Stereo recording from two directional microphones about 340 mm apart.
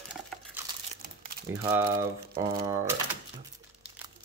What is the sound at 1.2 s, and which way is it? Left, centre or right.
Crumpling, right.